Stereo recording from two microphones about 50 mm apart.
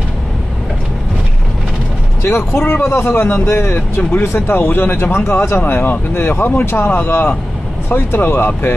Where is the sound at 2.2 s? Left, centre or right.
Left.